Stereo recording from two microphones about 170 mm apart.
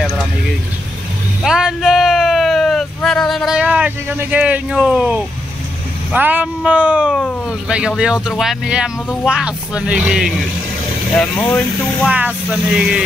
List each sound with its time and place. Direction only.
1.4 s a sound: 5° right (ahead or behind)
6.1 s speech: 10° right (ahead or behind)
7.2 s speech: 5° left (ahead or behind)
12.1 s speech: 10° right (ahead or behind)